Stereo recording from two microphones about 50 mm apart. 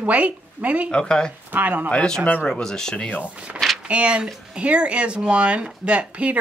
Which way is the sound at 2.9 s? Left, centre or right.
Left.